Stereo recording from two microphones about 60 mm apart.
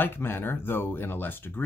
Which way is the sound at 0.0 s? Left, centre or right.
Left.